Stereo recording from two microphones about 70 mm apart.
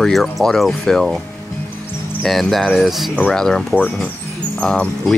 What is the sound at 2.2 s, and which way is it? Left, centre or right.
Speech, centre.